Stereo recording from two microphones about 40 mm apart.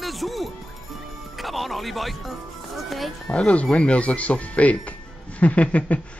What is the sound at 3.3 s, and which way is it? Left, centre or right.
Speech, left.